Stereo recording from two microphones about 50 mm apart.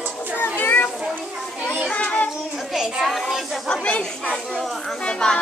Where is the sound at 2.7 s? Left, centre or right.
Centre.